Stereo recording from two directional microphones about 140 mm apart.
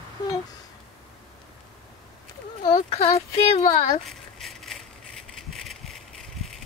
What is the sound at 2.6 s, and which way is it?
Speech, 45° left (ahead or behind).